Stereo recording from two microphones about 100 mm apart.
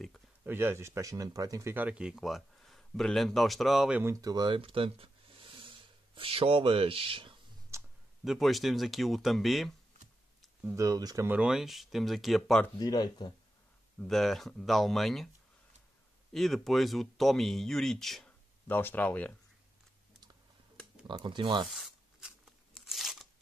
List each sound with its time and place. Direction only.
0.4 s speech: 20° right (ahead or behind)
1.9 s speech: 10° right (ahead or behind)
4.0 s speech: 35° right (ahead or behind)
4.6 s a sound: 65° right (ahead or behind)
7.7 s clicking: 30° right (ahead or behind)
8.2 s speech: centre (ahead or behind)
10.7 s speech: 35° right (ahead or behind)
11.2 s speech: 10° right (ahead or behind)
12.7 s speech: 40° left (ahead or behind)
14.0 s speech: centre (ahead or behind)
16.3 s speech: centre (ahead or behind)
18.7 s speech: 20° left (ahead or behind)
21.1 s speech: 50° right (ahead or behind)
21.6 s tearing: centre (ahead or behind)